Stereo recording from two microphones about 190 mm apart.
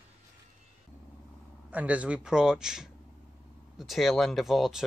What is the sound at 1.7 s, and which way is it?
Speech, 5° right (ahead or behind).